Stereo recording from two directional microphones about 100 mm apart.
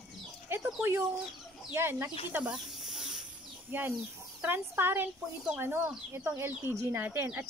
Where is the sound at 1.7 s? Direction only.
25° right (ahead or behind).